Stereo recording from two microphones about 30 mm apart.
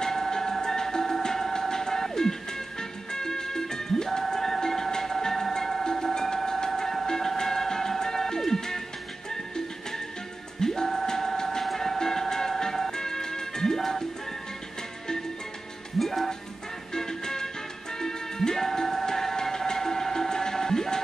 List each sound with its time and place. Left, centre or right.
0.0 s train: centre
2.8 s music: left
6.3 s train: left
7.1 s music: centre
10.6 s music: centre
11.6 s music: centre
12.0 s music: centre
16.0 s music: centre
16.9 s music: left